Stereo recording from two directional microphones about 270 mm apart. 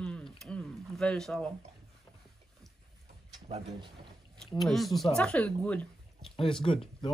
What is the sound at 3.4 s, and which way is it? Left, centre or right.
Speech, right.